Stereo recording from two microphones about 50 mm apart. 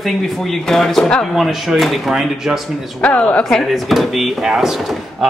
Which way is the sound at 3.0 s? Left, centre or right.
Left.